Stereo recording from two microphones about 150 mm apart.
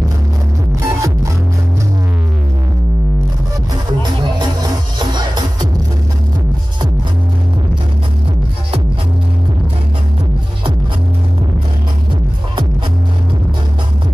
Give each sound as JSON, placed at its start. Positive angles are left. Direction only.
{"t": 0.8, "sound": "music", "side_deg": -20}
{"t": 4.0, "sound": "music", "side_deg": -30}